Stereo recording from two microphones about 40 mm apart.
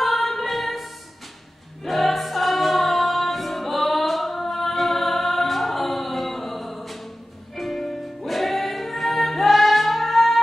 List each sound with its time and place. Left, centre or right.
0.0 s music: centre
1.8 s choir: centre
7.5 s music: centre